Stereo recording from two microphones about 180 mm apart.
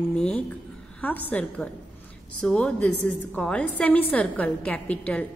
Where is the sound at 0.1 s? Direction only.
5° left (ahead or behind).